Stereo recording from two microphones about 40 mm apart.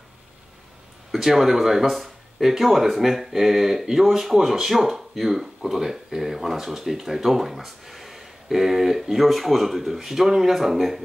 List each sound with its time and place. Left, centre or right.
1.1 s speech: centre